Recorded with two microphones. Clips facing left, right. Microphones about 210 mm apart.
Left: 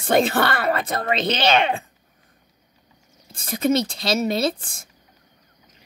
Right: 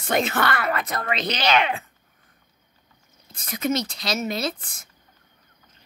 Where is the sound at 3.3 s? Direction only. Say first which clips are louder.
Left 5 dB; 30° left (ahead or behind).